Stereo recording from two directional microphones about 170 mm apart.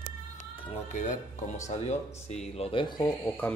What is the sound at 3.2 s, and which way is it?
Speech, 10° left (ahead or behind).